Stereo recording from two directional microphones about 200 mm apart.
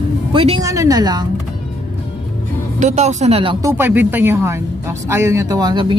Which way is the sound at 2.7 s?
35° right (ahead or behind).